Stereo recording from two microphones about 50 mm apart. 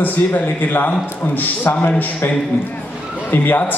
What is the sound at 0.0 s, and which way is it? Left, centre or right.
A man's voice, left.